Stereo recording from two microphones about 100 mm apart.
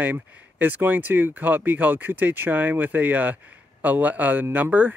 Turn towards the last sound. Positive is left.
turn(degrees=-15)  # may be behind; listen again after turning